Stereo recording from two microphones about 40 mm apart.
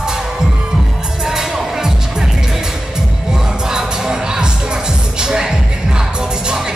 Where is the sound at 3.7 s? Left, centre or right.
Centre.